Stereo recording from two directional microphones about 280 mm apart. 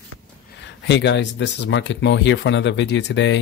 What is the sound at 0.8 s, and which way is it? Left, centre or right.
Speech, left.